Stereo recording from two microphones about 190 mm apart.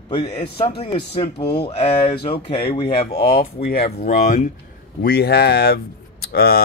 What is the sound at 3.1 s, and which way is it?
Speech, 50° left (ahead or behind).